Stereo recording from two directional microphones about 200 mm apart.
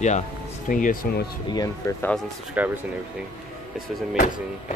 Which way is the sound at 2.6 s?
5° right (ahead or behind).